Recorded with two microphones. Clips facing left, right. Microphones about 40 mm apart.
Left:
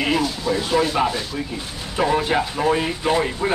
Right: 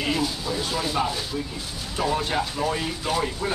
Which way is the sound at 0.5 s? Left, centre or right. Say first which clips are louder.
Left 8 dB; centre.